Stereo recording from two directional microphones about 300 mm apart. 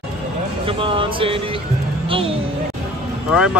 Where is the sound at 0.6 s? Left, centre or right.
Centre.